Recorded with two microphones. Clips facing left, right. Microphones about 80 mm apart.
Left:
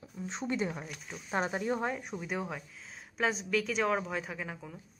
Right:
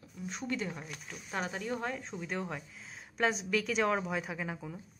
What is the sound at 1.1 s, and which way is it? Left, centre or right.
Speech, left.